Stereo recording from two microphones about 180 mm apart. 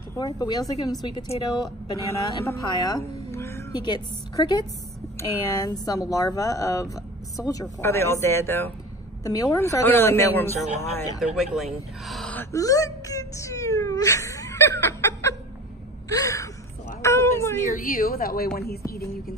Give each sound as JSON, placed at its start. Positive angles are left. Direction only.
{"t": 0.1, "sound": "a woman's voice", "side_deg": 20}
{"t": 11.1, "sound": "speech", "side_deg": 0}
{"t": 12.5, "sound": "a woman's voice", "side_deg": 20}
{"t": 17.0, "sound": "a sound", "side_deg": 15}
{"t": 17.6, "sound": "a woman's voice", "side_deg": 50}